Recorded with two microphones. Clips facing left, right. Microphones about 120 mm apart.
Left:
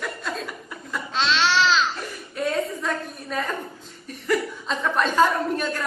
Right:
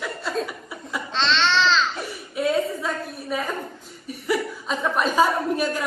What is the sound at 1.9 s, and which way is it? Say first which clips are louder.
A woman's voice: right 2 dB; 5° right (ahead or behind).